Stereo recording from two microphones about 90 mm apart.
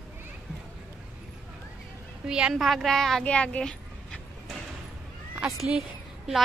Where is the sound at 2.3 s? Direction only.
10° right (ahead or behind).